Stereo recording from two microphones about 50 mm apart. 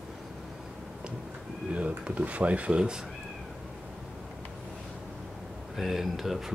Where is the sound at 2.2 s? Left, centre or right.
Right.